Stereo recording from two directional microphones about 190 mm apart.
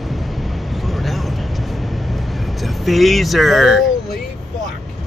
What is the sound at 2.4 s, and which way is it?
Vehicle, centre (ahead or behind).